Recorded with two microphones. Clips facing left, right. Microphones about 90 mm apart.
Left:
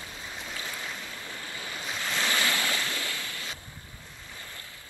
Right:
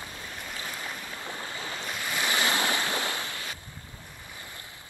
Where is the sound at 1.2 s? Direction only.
25° right (ahead or behind).